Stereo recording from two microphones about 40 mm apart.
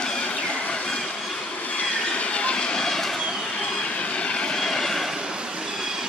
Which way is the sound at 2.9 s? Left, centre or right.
Centre.